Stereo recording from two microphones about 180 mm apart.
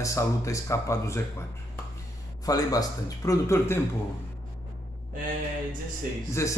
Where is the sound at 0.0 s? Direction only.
15° left (ahead or behind).